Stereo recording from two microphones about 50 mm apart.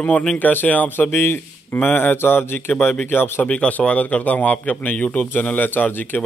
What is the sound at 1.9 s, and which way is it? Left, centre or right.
Speech, left.